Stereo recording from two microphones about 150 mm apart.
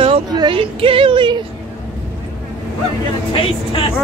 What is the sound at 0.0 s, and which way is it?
Speech, 30° right (ahead or behind).